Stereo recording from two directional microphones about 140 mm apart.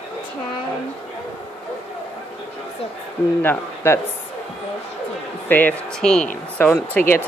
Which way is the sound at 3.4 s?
20° left (ahead or behind).